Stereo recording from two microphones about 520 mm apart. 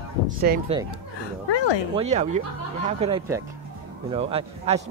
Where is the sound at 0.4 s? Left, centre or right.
Centre.